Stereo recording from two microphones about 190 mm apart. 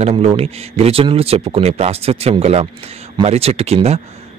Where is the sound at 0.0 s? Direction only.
30° right (ahead or behind).